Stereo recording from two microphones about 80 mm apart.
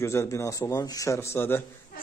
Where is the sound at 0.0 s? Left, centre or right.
Left.